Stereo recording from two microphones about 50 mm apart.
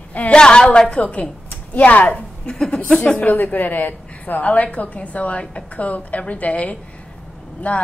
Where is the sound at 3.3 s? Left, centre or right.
Left.